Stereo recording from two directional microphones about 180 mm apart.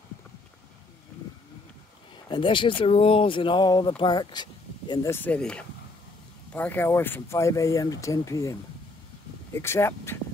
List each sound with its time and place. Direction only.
2.2 s speech: 25° left (ahead or behind)
5.1 s speech: 10° left (ahead or behind)